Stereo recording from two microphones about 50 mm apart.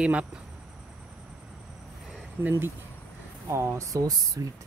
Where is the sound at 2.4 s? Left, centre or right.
Right.